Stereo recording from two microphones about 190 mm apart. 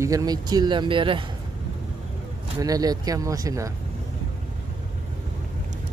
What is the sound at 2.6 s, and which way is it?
Speech, 20° right (ahead or behind).